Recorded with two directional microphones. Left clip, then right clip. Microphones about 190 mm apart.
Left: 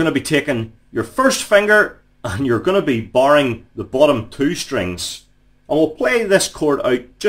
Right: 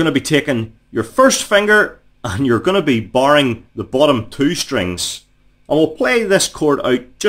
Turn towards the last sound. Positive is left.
turn(degrees=-30)  # may be behind; listen again after turning